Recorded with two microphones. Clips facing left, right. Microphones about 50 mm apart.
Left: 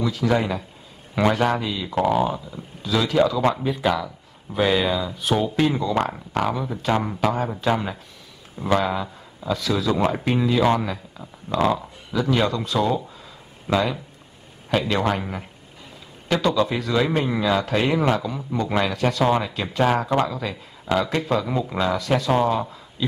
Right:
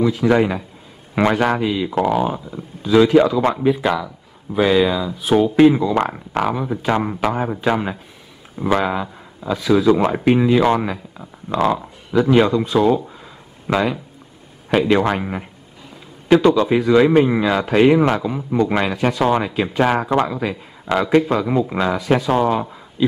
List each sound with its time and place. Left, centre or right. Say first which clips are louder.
0.0 s a man's voice: right 6 dB; right; by 5.3 s centre
5.6 s a man's voice: right 8 dB; centre
14.7 s a man's voice: right 6 dB; right